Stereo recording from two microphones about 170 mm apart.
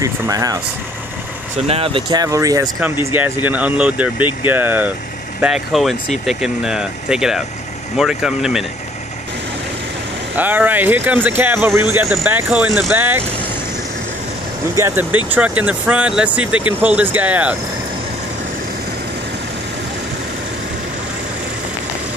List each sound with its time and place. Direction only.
0.0 s speech: 20° right (ahead or behind)
1.7 s speech: 35° right (ahead or behind)
3.4 s speech: 10° right (ahead or behind)
10.3 s speech: 10° right (ahead or behind)
14.8 s speech: 15° right (ahead or behind)